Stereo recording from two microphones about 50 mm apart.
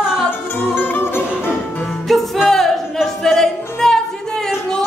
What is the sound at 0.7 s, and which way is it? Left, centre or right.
Music, left.